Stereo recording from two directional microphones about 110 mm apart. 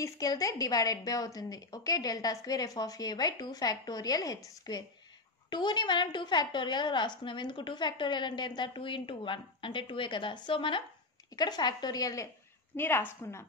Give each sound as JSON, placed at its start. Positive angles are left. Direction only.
{"t": 0.0, "sound": "a woman's voice", "side_deg": 30}
{"t": 11.3, "sound": "a woman's voice", "side_deg": 40}
{"t": 12.7, "sound": "a woman's voice", "side_deg": 20}